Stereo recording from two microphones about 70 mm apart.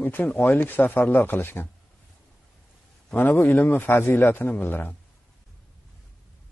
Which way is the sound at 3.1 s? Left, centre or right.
Left.